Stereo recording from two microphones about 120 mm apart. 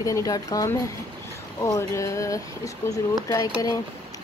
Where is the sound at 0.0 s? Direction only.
30° left (ahead or behind).